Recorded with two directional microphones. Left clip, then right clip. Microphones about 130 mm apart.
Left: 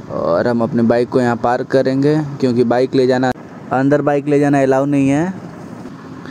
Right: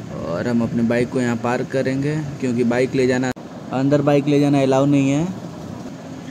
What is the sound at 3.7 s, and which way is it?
Speech, 50° left (ahead or behind).